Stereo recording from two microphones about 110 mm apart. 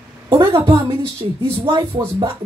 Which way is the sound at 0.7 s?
35° right (ahead or behind).